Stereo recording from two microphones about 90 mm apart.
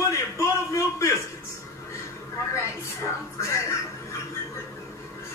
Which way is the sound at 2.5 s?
30° left (ahead or behind).